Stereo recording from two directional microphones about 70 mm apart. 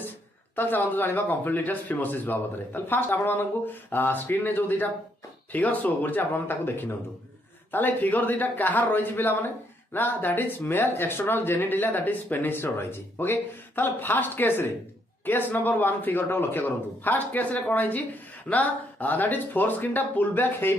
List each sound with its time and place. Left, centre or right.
0.6 s speech: left